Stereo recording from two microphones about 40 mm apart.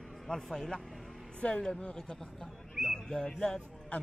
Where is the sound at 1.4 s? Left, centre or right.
Left.